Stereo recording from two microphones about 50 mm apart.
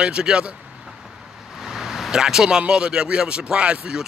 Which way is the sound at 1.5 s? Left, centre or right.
Centre.